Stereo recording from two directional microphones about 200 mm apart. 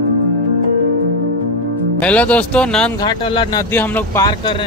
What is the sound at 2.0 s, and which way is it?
Speech, 5° left (ahead or behind).